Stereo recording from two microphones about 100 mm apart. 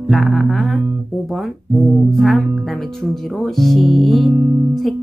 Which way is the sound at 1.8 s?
Centre (ahead or behind).